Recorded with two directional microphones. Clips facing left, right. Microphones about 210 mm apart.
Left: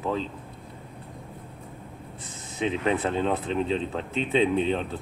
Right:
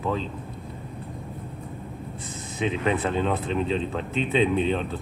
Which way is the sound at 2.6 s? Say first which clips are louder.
Even; 25° left (ahead or behind).